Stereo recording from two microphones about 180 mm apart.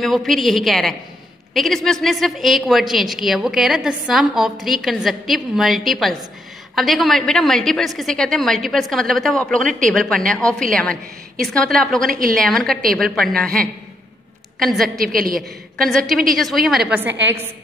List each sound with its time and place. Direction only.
0.0 s a woman's voice: centre (ahead or behind)
12.1 s a woman's voice: 50° right (ahead or behind)
12.4 s a woman's voice: centre (ahead or behind)
15.1 s a woman's voice: 55° right (ahead or behind)
15.8 s a woman's voice: 5° left (ahead or behind)